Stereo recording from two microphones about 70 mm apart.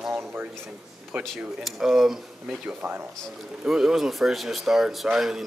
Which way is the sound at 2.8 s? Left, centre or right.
Right.